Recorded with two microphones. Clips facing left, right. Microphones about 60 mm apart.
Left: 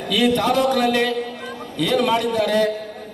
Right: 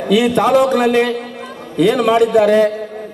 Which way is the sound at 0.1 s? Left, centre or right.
Centre.